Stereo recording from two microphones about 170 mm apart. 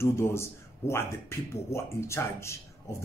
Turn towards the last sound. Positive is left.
turn(degrees=15)  # may be behind; listen again after turning